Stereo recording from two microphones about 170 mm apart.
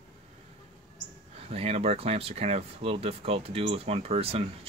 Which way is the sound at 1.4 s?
35° right (ahead or behind).